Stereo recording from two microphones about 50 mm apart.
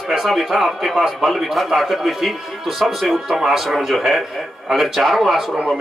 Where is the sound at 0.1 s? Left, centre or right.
Centre.